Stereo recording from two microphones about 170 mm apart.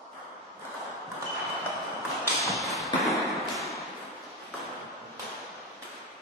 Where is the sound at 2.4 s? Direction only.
Centre (ahead or behind).